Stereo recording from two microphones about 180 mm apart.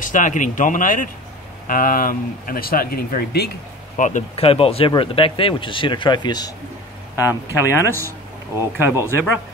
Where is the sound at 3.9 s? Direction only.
45° left (ahead or behind).